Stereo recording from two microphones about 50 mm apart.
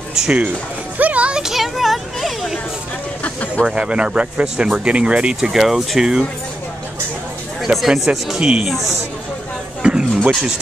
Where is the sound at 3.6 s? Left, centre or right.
Centre.